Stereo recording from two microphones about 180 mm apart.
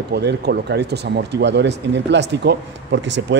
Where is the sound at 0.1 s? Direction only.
70° right (ahead or behind).